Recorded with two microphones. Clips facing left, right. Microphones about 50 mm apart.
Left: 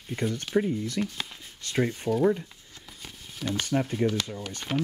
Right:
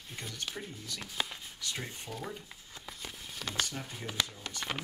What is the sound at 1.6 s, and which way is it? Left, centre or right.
Speech, left.